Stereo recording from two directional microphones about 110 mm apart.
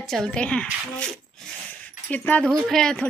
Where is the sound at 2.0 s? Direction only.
15° left (ahead or behind).